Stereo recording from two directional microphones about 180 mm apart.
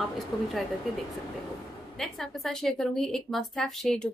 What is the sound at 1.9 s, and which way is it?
A woman's voice, centre (ahead or behind).